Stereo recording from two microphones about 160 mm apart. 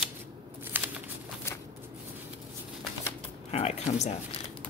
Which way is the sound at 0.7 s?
10° right (ahead or behind).